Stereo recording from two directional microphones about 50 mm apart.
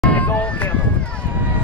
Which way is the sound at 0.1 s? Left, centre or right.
Left.